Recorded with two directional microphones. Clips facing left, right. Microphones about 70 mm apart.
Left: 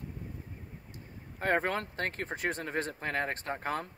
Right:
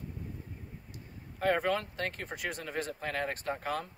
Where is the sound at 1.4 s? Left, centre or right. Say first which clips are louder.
Right 1 dB; left.